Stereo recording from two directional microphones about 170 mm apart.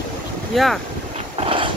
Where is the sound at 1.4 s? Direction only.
30° right (ahead or behind).